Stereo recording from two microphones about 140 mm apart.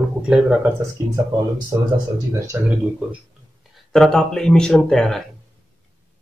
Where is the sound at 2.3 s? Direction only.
20° right (ahead or behind).